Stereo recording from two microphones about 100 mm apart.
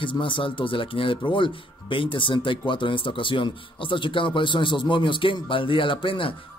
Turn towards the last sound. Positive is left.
turn(degrees=60)  # may be behind; listen again after turning